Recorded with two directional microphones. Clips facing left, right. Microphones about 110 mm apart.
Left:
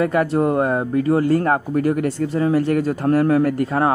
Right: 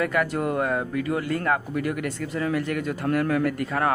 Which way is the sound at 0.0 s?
30° left (ahead or behind).